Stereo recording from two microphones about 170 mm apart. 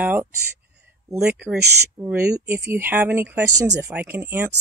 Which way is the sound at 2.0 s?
15° right (ahead or behind).